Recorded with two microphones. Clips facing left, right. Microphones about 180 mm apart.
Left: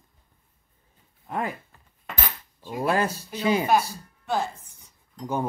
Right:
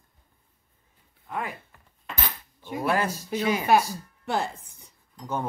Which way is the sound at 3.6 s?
65° right (ahead or behind).